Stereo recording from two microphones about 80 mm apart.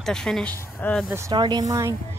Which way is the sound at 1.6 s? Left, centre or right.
Right.